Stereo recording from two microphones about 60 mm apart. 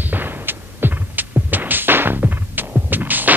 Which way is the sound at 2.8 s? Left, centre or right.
Right.